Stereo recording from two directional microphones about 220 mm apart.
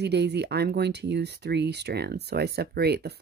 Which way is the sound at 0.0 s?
50° right (ahead or behind).